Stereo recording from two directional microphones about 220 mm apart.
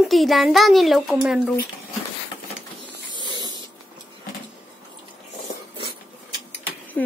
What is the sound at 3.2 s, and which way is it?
Spray, 20° right (ahead or behind).